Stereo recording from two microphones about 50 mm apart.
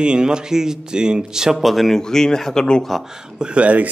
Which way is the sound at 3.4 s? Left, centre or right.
Right.